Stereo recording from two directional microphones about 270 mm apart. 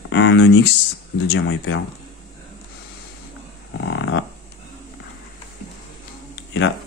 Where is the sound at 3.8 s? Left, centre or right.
Left.